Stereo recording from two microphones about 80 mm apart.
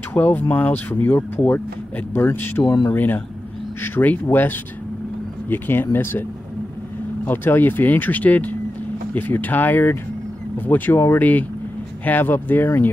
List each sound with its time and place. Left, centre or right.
0.1 s speech: left
7.2 s speech: left